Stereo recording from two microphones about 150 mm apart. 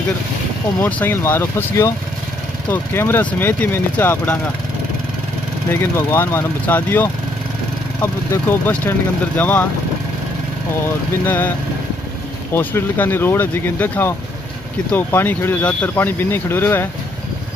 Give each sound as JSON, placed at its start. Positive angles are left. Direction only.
{"t": 0.7, "sound": "speech", "side_deg": 10}
{"t": 5.7, "sound": "speech", "side_deg": 15}
{"t": 11.2, "sound": "speech", "side_deg": 10}
{"t": 12.5, "sound": "speech", "side_deg": 15}